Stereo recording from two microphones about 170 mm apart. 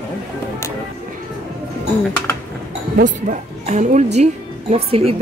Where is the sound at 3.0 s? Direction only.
45° right (ahead or behind).